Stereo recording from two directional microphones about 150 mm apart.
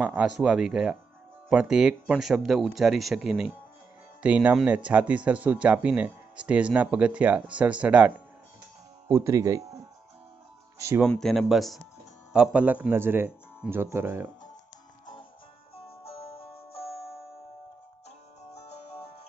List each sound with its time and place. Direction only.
0.0 s speech: 10° right (ahead or behind)
9.1 s speech: 20° right (ahead or behind)
10.8 s speech: 15° right (ahead or behind)
11.1 s speech: 5° left (ahead or behind); by 14.2 s 15° right (ahead or behind)
15.9 s music: 40° left (ahead or behind)